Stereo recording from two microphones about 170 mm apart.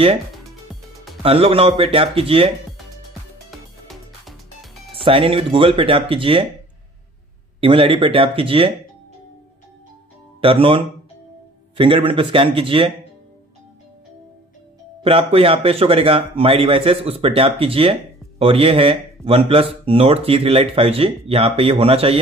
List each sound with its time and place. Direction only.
1.2 s speech: 35° right (ahead or behind)
3.4 s music: centre (ahead or behind)
4.9 s speech: 30° right (ahead or behind)
7.6 s speech: 30° right (ahead or behind)
10.4 s speech: 30° right (ahead or behind)
15.0 s speech: 35° right (ahead or behind)